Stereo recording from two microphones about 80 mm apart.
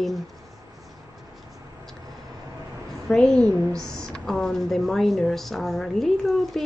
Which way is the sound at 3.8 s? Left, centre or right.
Centre.